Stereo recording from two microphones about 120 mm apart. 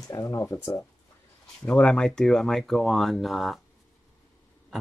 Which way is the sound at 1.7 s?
5° left (ahead or behind).